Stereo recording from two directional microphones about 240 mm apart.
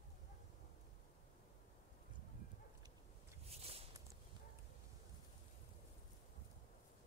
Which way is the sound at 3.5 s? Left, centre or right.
Right.